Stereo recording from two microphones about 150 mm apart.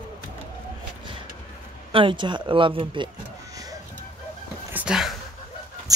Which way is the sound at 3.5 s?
25° right (ahead or behind).